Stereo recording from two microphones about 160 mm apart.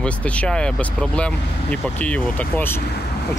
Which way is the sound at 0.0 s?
10° left (ahead or behind).